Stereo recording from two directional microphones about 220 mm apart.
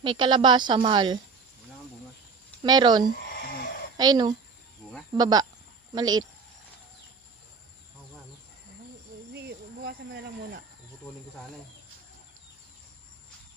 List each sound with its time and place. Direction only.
0.0 s speech: 20° right (ahead or behind)
2.6 s speech: 20° right (ahead or behind)